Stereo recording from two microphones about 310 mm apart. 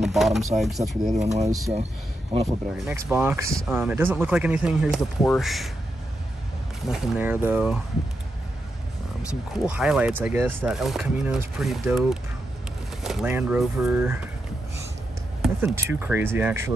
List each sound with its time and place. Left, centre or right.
0.0 s speech: centre
1.1 s speech: right
1.4 s speech: centre
6.9 s speech: centre
9.7 s speech: centre
15.4 s speech: centre